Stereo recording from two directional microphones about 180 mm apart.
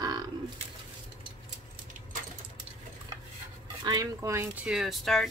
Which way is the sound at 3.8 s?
20° right (ahead or behind).